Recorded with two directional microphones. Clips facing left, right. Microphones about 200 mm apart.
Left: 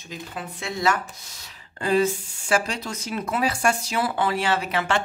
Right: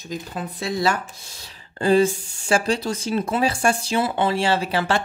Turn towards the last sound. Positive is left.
turn(degrees=-30)  # may be behind; listen again after turning